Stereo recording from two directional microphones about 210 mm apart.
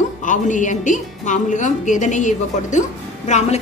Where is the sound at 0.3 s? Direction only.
35° left (ahead or behind).